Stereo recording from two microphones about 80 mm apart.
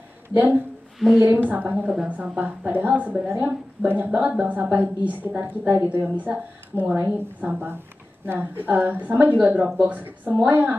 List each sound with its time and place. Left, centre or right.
0.9 s a woman's voice: centre
1.2 s a woman's voice: right